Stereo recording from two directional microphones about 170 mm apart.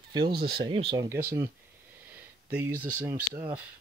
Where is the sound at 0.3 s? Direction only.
70° right (ahead or behind).